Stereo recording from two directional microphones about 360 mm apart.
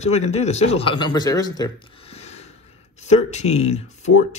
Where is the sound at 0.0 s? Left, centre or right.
Centre.